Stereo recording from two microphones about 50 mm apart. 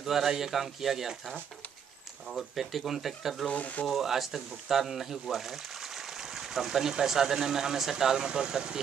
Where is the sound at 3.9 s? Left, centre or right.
Centre.